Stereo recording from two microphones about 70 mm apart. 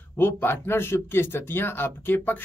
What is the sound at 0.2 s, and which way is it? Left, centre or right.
Speech, left.